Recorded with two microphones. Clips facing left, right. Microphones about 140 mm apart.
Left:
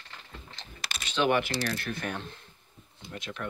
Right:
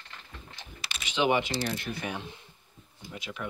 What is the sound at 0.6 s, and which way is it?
Typing, 15° right (ahead or behind).